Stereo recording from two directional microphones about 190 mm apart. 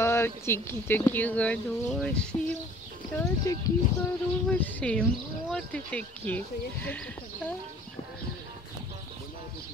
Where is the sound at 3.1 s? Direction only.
15° left (ahead or behind).